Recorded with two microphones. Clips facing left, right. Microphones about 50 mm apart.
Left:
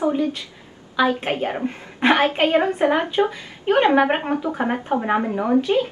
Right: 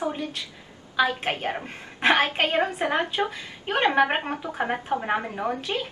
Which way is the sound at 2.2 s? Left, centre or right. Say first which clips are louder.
Left 6 dB; left.